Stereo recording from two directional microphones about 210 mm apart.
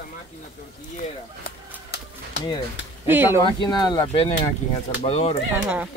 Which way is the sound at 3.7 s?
20° left (ahead or behind).